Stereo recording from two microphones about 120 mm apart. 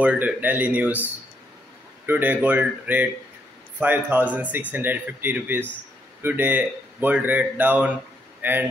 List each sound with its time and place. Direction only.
0.0 s speech: 10° right (ahead or behind)
2.0 s speech: 15° right (ahead or behind)